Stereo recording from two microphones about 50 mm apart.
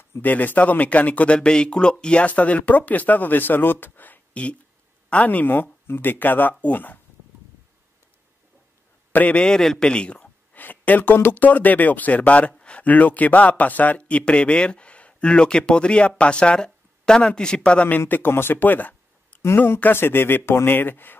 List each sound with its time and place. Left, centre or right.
0.2 s a man's voice: left
9.1 s a man's voice: left
9.4 s a man's voice: centre
9.8 s a sound: left
10.6 s a man's voice: left
12.5 s a sound: left
12.8 s speech: left
17.8 s speech: left